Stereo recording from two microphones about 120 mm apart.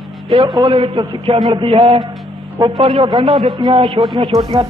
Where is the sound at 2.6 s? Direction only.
35° right (ahead or behind).